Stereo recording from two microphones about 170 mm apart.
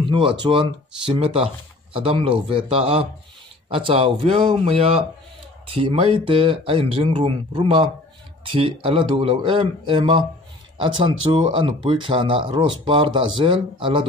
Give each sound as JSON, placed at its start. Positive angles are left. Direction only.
{"t": 0.1, "sound": "speech", "side_deg": -30}